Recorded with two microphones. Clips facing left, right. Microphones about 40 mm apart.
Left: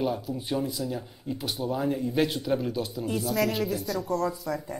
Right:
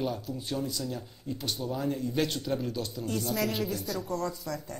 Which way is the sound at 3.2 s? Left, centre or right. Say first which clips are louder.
Left 5 dB; centre.